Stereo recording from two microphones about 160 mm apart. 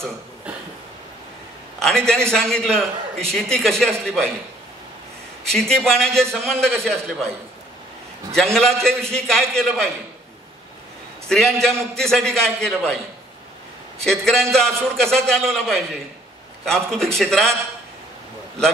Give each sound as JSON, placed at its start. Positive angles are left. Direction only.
{"t": 1.8, "sound": "a man's voice", "side_deg": 5}
{"t": 5.5, "sound": "a man's voice", "side_deg": 5}
{"t": 8.3, "sound": "a man's voice", "side_deg": 5}
{"t": 11.2, "sound": "a man's voice", "side_deg": 0}
{"t": 14.0, "sound": "a man's voice", "side_deg": 5}